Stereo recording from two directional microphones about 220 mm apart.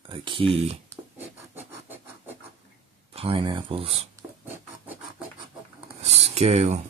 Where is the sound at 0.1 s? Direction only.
25° right (ahead or behind).